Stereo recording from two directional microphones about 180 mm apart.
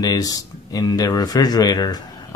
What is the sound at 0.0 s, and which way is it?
Speech, 20° left (ahead or behind).